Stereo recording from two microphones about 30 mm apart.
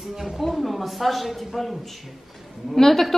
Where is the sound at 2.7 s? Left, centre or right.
Centre.